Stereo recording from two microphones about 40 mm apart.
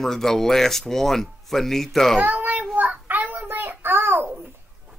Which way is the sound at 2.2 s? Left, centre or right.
Right.